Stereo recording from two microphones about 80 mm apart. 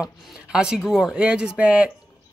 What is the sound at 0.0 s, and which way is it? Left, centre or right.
Speech, centre.